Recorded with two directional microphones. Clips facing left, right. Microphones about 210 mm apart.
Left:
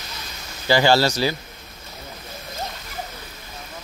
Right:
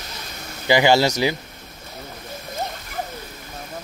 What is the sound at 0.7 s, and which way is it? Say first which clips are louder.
Speech: right 1 dB; 20° right (ahead or behind).